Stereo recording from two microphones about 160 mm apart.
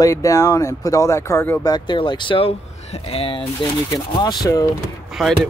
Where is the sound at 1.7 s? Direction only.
30° left (ahead or behind).